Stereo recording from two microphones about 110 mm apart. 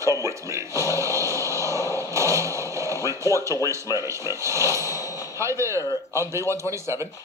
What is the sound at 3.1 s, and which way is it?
A man's voice, 25° right (ahead or behind).